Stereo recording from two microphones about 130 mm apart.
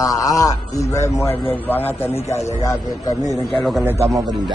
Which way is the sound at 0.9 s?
20° left (ahead or behind).